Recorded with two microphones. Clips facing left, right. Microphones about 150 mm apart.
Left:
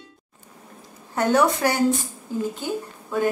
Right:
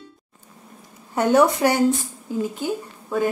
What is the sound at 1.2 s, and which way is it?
Speech, 20° right (ahead or behind).